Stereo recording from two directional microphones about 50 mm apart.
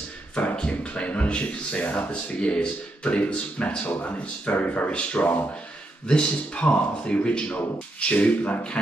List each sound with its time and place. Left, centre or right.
0.3 s speech: left